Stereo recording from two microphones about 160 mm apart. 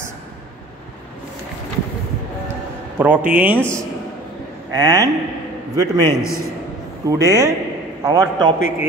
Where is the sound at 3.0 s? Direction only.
10° right (ahead or behind).